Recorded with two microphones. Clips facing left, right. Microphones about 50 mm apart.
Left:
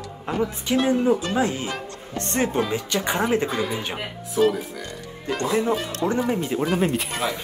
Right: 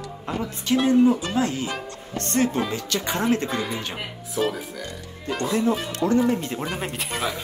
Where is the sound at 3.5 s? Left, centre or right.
Centre.